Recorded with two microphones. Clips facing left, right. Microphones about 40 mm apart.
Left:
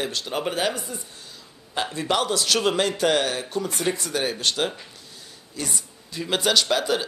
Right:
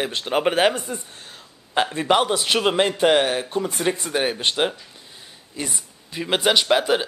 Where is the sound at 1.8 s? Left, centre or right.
Right.